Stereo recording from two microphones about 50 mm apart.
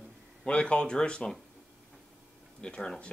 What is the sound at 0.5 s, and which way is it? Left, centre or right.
Speech, left.